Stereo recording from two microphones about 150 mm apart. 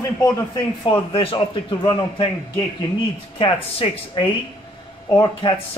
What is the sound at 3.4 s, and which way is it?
Speech, 35° left (ahead or behind).